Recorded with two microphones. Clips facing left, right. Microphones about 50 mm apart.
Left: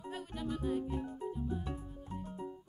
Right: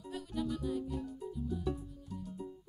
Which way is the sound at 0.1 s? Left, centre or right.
Left.